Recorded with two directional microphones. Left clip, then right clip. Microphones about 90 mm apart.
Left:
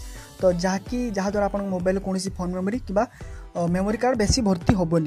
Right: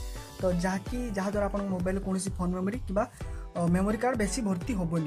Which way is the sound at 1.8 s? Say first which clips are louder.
Left 8 dB; 60° left (ahead or behind).